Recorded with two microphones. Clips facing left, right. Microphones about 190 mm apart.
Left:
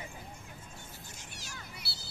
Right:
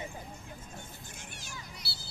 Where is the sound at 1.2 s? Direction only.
55° right (ahead or behind).